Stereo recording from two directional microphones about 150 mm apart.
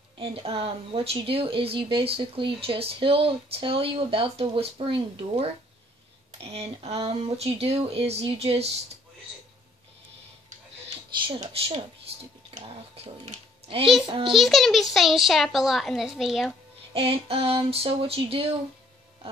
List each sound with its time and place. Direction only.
0.2 s speech: 40° right (ahead or behind)
11.2 s speech: 35° right (ahead or behind)
14.3 s a child's voice: centre (ahead or behind)
16.9 s speech: 40° right (ahead or behind)